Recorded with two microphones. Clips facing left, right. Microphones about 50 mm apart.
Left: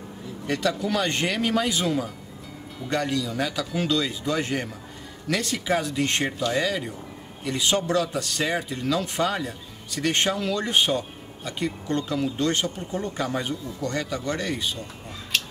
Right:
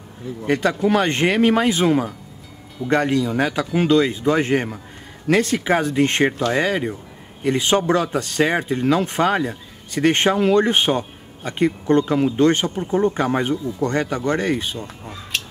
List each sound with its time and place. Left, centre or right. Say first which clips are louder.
0.5 s speech: right 7 dB; right